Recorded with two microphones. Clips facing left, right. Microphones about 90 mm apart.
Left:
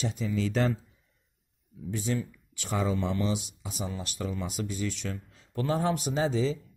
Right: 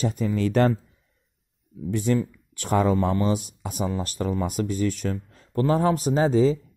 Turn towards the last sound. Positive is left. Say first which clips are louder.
# right 8 dB
turn(degrees=-40)  # may be behind; listen again after turning